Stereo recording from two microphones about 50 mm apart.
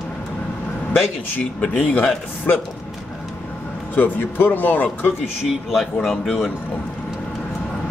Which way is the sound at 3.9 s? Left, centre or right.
Left.